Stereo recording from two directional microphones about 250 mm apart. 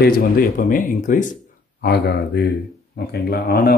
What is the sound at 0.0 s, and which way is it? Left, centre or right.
Speech, left.